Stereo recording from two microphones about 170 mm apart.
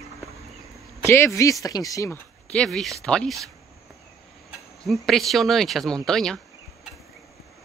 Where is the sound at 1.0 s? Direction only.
15° left (ahead or behind).